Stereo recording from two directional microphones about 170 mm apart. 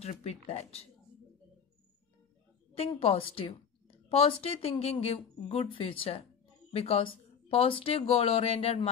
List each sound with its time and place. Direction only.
0.0 s a woman's voice: 40° left (ahead or behind)
2.7 s a woman's voice: 35° left (ahead or behind)